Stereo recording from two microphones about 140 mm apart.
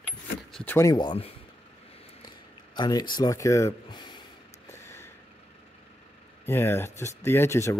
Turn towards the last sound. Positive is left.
turn(degrees=20)  # may be behind; listen again after turning